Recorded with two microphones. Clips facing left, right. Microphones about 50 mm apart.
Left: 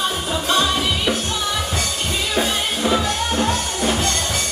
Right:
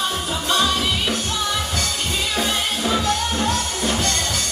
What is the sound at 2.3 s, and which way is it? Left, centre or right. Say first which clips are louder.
Music: left 3 dB; centre.